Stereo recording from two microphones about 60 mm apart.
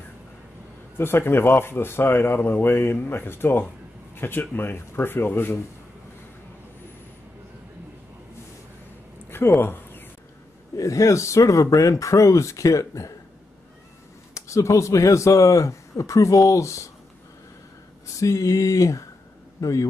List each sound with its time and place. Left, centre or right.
0.9 s speech: left
9.6 s a sound: left
10.8 s speech: left
14.3 s speech: left
18.2 s a man's voice: left